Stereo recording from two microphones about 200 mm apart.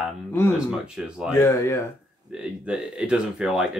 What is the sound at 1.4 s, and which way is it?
Speech, 15° left (ahead or behind).